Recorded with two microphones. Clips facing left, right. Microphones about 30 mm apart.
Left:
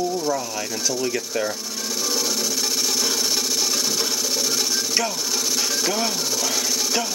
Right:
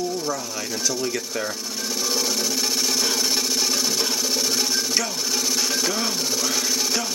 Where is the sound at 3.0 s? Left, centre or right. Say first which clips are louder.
Even; centre.